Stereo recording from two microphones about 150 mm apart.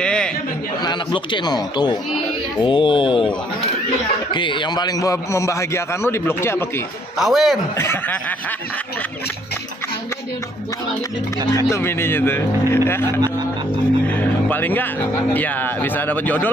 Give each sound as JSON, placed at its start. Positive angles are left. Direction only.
{"t": 0.0, "sound": "chatter", "side_deg": 5}
{"t": 0.8, "sound": "a man's voice", "side_deg": 30}
{"t": 7.2, "sound": "a man's voice", "side_deg": 0}
{"t": 7.7, "sound": "speech", "side_deg": 15}
{"t": 11.7, "sound": "speech", "side_deg": 15}
{"t": 14.0, "sound": "speech", "side_deg": 10}